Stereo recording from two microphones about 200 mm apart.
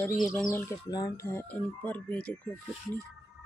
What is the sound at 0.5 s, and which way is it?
Speech, 15° left (ahead or behind).